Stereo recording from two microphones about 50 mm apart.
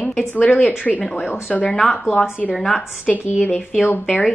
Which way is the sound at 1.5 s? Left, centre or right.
Centre.